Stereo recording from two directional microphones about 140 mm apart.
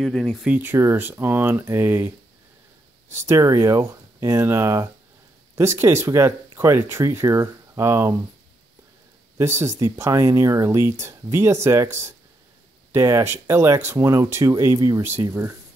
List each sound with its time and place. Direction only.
0.0 s speech: 5° left (ahead or behind)
0.6 s speech: 15° right (ahead or behind)
3.3 s speech: 25° right (ahead or behind)
9.4 s speech: 20° right (ahead or behind)